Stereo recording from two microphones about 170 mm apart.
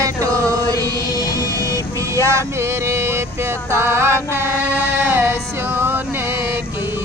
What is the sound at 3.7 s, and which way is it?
Mantra, 15° right (ahead or behind).